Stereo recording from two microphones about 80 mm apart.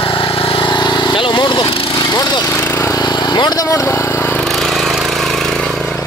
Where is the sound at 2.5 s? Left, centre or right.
Left.